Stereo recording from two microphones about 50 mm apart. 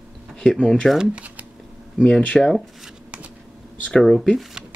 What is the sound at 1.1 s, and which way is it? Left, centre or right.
Speech, right.